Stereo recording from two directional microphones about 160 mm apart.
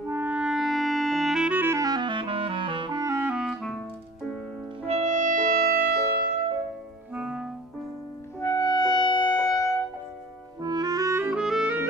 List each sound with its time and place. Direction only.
0.1 s clarinet: 10° right (ahead or behind)
4.8 s music: 45° right (ahead or behind); by 5.9 s 70° right (ahead or behind)
7.2 s clarinet: 5° right (ahead or behind)
8.4 s music: 20° left (ahead or behind)
10.6 s clarinet: 25° right (ahead or behind)
11.2 s clarinet: 5° right (ahead or behind)